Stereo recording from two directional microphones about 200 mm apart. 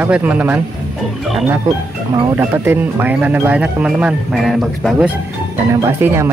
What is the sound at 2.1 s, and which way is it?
Speech, 10° right (ahead or behind).